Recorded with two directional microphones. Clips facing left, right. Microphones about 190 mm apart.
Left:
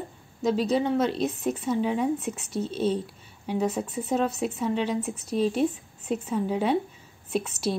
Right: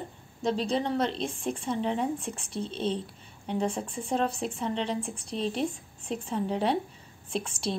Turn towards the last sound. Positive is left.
turn(degrees=-30)  # may be behind; listen again after turning